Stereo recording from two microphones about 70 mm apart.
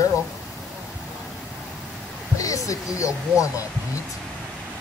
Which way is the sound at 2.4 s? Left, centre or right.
Left.